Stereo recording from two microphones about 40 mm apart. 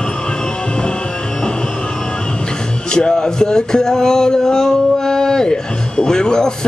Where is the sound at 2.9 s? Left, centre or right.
Centre.